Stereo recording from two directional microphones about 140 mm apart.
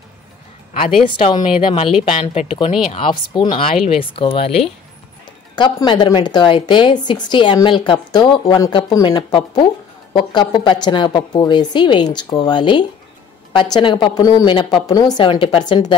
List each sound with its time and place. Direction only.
1.2 s a woman's voice: 35° left (ahead or behind)
5.6 s a woman's voice: 30° left (ahead or behind)
9.0 s a woman's voice: 35° left (ahead or behind)